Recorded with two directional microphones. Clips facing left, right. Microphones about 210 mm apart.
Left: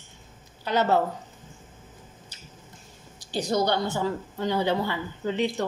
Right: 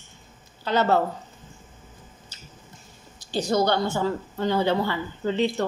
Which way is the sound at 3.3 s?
15° left (ahead or behind).